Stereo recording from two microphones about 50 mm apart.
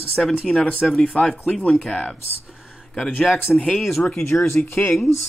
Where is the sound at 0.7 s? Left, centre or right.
Left.